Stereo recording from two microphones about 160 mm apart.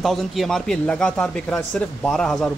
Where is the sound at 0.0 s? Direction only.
Centre (ahead or behind).